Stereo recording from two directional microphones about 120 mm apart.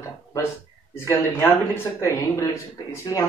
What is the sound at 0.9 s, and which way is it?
Speech, 20° left (ahead or behind).